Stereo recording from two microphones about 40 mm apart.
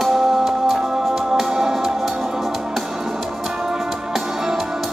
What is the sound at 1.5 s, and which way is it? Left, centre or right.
Music, centre.